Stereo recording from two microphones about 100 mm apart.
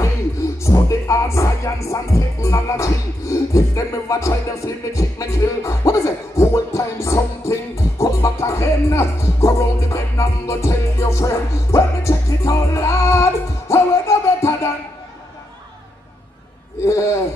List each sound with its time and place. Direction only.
0.0 s speech: 30° left (ahead or behind)